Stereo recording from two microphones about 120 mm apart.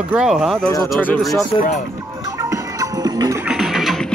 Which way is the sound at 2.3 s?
25° right (ahead or behind).